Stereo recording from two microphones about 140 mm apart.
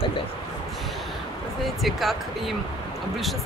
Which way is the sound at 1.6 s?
Centre (ahead or behind).